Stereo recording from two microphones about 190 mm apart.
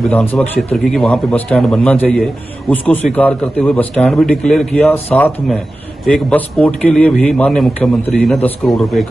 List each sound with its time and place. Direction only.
0.1 s a man's voice: 10° left (ahead or behind)